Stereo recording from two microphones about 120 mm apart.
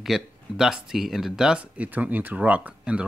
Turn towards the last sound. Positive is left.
turn(degrees=-10)  # may be behind; listen again after turning